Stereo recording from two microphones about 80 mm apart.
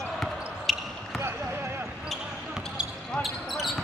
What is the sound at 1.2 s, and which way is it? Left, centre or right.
Basketball bounce, right.